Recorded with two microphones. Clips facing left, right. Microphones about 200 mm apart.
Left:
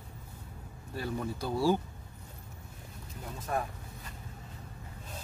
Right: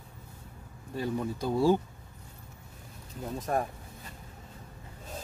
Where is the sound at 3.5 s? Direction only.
40° right (ahead or behind).